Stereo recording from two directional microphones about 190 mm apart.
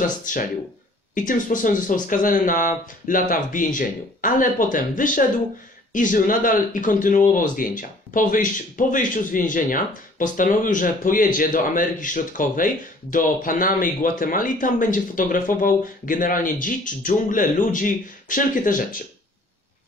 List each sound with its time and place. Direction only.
0.0 s speech: 45° left (ahead or behind)